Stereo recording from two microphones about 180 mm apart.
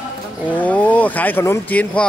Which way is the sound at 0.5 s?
10° left (ahead or behind).